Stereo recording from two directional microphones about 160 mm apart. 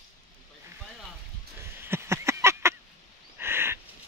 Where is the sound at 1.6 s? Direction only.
15° right (ahead or behind).